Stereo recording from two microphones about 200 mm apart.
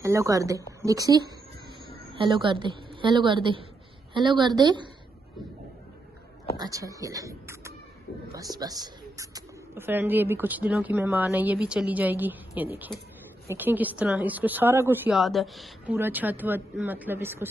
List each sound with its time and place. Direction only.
0.0 s a woman's voice: 15° right (ahead or behind)
6.5 s speech: 20° right (ahead or behind)